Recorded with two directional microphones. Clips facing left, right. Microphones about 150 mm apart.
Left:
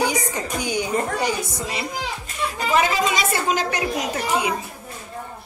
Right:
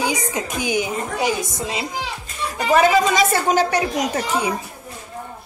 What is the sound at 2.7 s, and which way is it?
A woman's voice, 40° right (ahead or behind).